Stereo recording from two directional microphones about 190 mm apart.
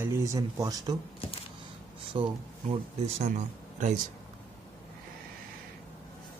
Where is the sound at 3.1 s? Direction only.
40° right (ahead or behind).